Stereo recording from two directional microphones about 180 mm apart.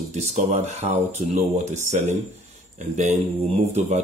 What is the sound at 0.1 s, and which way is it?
Speech, 40° right (ahead or behind).